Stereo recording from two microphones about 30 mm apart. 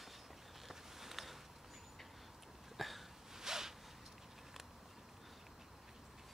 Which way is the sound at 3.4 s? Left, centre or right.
Centre.